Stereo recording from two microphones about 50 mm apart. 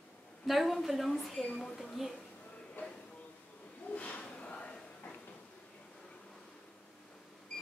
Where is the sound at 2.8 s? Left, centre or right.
Left.